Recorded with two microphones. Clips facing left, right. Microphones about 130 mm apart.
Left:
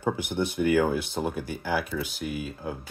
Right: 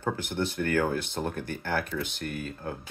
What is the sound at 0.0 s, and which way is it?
Speech, 15° left (ahead or behind).